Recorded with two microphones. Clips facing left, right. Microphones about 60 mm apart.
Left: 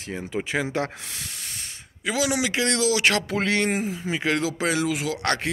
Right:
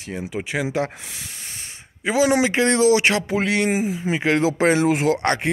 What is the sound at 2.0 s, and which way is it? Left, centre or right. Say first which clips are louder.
Speech: right 6 dB; right.